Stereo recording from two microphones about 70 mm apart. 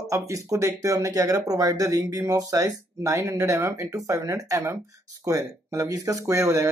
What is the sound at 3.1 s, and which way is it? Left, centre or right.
Speech, right.